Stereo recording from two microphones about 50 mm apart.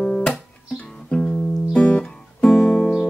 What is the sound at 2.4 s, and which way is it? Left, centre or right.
Guitar, centre.